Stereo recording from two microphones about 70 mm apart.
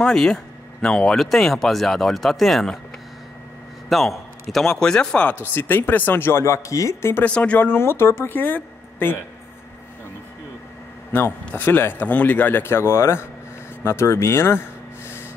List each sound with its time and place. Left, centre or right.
0.0 s speech: centre
3.9 s speech: centre
5.5 s speech: left
7.2 s speech: centre
7.6 s speech: left
11.1 s a man's voice: left